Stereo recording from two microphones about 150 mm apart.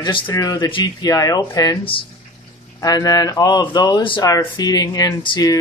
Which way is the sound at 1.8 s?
35° left (ahead or behind).